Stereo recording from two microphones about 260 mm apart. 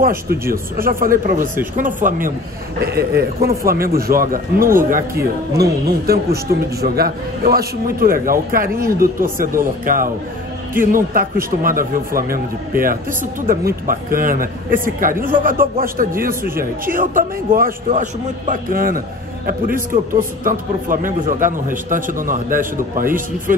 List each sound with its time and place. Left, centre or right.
0.0 s a man's voice: right
11.1 s a man's voice: right